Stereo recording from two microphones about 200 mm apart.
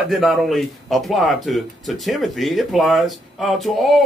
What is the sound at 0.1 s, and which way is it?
Speech, centre (ahead or behind).